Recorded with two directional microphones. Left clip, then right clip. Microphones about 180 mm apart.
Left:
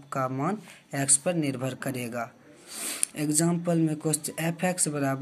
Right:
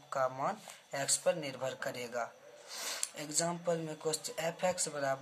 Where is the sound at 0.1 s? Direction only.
15° left (ahead or behind).